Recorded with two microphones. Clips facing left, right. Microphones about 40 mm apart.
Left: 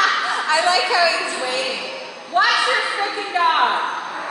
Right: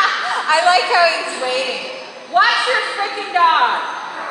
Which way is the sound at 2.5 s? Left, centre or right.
Centre.